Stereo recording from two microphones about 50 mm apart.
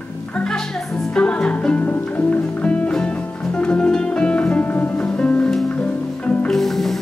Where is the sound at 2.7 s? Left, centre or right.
Centre; by 4.9 s left.